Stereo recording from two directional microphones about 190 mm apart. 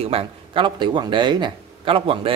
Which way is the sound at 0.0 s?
30° right (ahead or behind).